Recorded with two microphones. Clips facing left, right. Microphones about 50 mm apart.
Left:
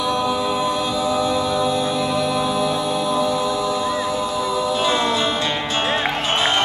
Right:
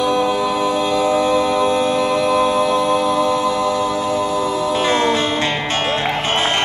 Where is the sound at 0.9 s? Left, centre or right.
Right.